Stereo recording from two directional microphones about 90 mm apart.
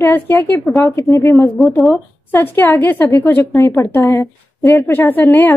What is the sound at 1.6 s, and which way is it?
Speech, centre (ahead or behind).